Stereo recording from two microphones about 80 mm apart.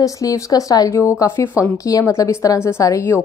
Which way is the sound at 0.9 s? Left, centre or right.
Left.